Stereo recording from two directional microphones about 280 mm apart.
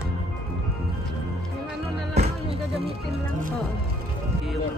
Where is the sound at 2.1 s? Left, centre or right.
Right.